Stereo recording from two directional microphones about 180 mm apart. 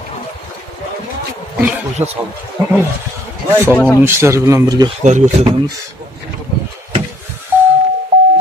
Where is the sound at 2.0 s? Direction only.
10° right (ahead or behind).